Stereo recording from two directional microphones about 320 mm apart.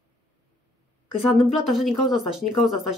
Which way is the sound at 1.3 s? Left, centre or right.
Centre.